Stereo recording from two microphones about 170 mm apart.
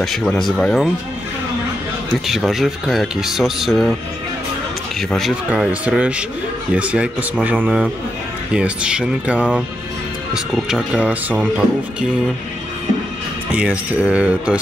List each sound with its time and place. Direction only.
0.0 s speech: 5° left (ahead or behind)
2.2 s speech: centre (ahead or behind)
5.1 s speech: centre (ahead or behind)
13.5 s speech: 5° right (ahead or behind)